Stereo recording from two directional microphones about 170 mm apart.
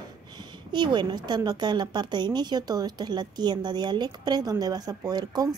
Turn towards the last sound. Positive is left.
turn(degrees=-25)  # may be behind; listen again after turning